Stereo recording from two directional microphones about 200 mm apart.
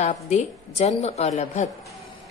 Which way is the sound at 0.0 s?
35° left (ahead or behind).